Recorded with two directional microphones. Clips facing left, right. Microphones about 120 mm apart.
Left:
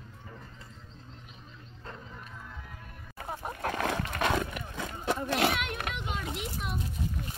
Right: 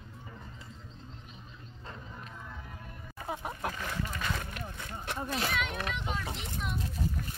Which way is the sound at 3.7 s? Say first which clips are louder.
Left 6 dB; 85° left.